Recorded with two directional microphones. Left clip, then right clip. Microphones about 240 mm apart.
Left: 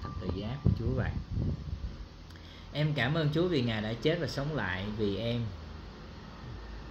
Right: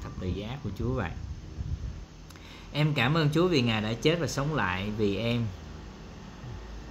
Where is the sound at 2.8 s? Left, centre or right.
Centre.